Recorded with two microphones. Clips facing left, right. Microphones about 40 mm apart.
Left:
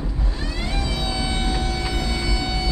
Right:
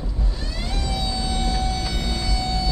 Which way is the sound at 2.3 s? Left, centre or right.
Left.